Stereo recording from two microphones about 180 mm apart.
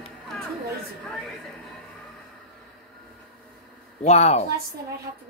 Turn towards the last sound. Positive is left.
turn(degrees=40)  # may be behind; listen again after turning